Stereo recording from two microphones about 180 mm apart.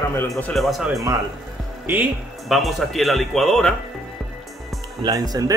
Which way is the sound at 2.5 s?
Centre (ahead or behind).